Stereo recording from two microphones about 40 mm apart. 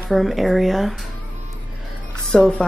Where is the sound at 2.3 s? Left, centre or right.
Left.